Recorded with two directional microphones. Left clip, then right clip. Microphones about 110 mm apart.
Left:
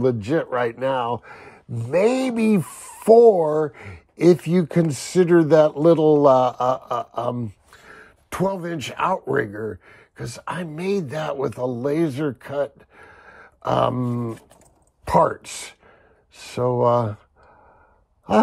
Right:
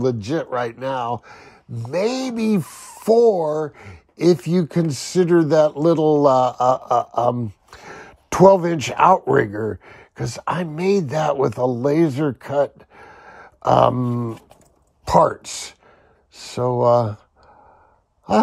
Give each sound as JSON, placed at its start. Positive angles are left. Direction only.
{"t": 0.0, "sound": "speech", "side_deg": -10}
{"t": 6.7, "sound": "speech", "side_deg": -20}
{"t": 7.7, "sound": "a sound", "side_deg": -35}
{"t": 9.3, "sound": "speech", "side_deg": -30}
{"t": 10.1, "sound": "speech", "side_deg": -55}
{"t": 10.6, "sound": "speech", "side_deg": -15}
{"t": 15.0, "sound": "speech", "side_deg": -5}